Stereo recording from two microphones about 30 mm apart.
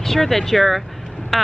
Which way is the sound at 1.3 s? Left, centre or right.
Centre.